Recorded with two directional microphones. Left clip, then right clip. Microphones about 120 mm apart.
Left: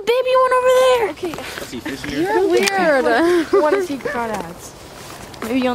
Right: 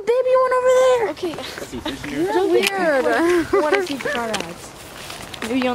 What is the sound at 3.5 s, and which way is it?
Speech, 5° left (ahead or behind).